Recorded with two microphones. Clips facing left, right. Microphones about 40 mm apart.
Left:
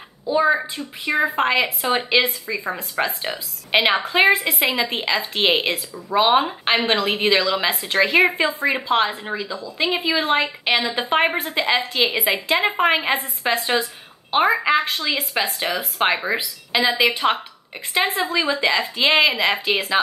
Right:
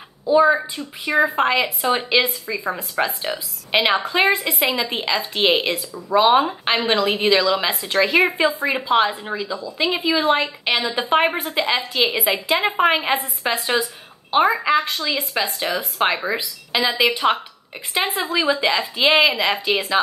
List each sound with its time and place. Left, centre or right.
0.3 s a woman's voice: centre